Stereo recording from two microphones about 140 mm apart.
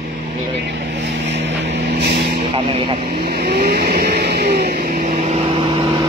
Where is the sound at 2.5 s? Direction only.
40° right (ahead or behind).